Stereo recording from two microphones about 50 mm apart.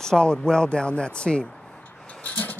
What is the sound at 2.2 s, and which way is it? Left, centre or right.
Dog, left.